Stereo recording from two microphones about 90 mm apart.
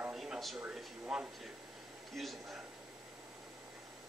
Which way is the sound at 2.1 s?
Centre (ahead or behind).